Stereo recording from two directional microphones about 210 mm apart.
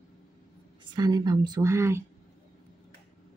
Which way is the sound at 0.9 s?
20° right (ahead or behind).